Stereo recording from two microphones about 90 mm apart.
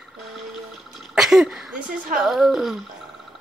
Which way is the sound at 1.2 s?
5° right (ahead or behind).